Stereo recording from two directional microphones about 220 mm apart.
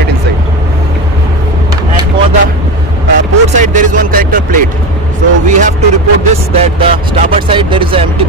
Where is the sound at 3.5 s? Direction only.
35° right (ahead or behind).